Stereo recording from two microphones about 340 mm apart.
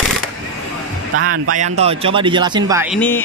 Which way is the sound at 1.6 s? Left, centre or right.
Centre.